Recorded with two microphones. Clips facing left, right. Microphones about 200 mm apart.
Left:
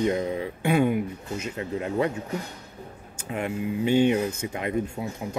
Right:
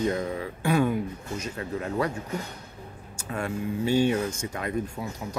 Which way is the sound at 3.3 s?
20° left (ahead or behind).